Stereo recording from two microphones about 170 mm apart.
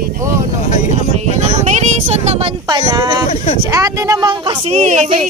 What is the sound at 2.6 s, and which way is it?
Speech, 25° right (ahead or behind).